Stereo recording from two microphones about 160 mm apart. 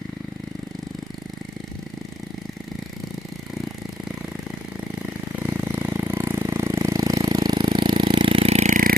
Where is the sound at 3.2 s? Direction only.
Centre (ahead or behind).